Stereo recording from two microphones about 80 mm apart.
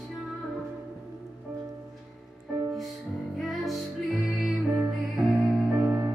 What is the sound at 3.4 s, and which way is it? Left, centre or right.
Music, centre.